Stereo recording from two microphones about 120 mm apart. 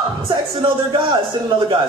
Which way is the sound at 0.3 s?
40° right (ahead or behind).